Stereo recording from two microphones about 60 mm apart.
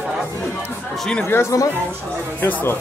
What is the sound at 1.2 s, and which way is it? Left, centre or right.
Speech, left.